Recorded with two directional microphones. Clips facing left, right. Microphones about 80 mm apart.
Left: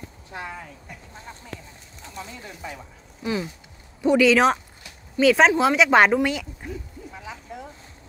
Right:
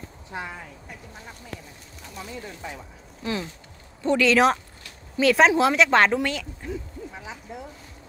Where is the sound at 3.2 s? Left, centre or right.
Centre.